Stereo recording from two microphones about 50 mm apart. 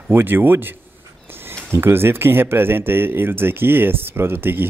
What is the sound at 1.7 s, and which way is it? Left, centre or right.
Speech, right.